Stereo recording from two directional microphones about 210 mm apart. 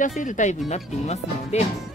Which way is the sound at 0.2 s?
35° left (ahead or behind).